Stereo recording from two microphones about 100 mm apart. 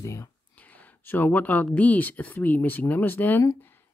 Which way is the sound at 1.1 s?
20° left (ahead or behind).